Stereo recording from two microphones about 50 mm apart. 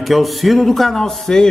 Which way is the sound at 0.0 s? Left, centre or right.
Centre.